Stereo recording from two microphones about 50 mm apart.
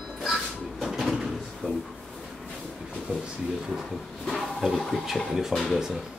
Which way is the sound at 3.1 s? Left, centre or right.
Right.